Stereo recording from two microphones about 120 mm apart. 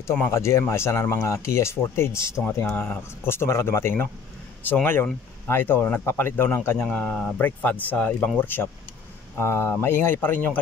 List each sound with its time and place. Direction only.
0.0 s speech: 20° left (ahead or behind)